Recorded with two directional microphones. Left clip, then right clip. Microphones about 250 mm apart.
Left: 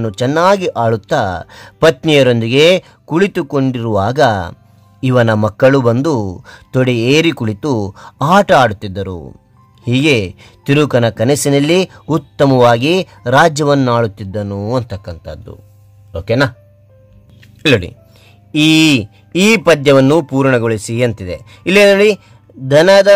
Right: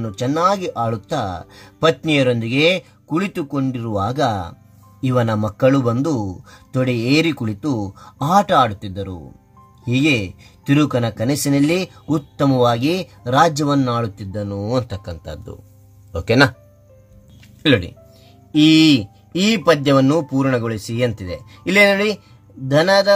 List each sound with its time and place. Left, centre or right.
0.0 s speech: left; by 16.5 s centre
17.6 s speech: left